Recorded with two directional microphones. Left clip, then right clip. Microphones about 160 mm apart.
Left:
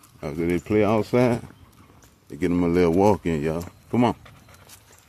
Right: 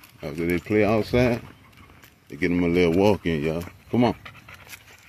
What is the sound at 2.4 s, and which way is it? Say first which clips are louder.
Speech: even; 10° left (ahead or behind).